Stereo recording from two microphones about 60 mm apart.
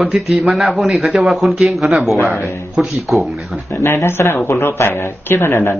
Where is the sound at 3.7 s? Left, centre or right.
Left.